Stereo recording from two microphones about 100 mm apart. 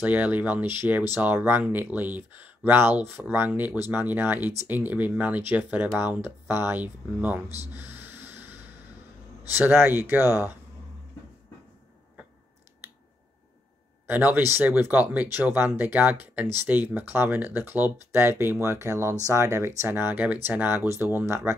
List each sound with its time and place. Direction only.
0.0 s speech: 15° right (ahead or behind)
7.4 s speech: 40° left (ahead or behind)
7.7 s snort: 20° right (ahead or behind)
9.5 s speech: 25° right (ahead or behind)
14.0 s speech: 20° right (ahead or behind)